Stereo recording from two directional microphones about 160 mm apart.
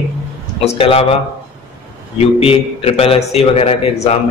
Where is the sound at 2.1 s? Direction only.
40° left (ahead or behind).